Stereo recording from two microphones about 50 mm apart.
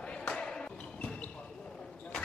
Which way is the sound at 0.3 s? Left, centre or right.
Centre.